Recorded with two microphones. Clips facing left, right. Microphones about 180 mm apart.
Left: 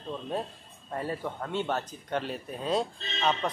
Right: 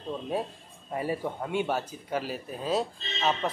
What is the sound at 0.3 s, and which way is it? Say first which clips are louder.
Speech: right 2 dB; 10° right (ahead or behind).